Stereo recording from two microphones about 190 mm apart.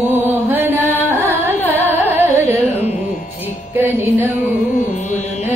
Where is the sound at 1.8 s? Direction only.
10° right (ahead or behind).